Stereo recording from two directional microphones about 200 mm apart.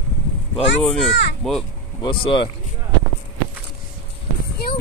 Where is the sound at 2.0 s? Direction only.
25° left (ahead or behind).